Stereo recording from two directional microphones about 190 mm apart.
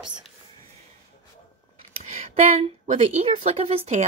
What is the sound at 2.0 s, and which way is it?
A woman's voice, 40° right (ahead or behind).